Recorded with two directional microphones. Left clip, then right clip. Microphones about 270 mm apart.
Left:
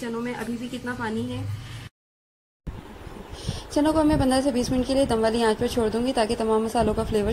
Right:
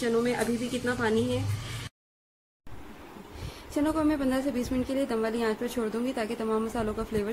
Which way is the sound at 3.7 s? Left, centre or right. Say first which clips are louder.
Left 6 dB; centre.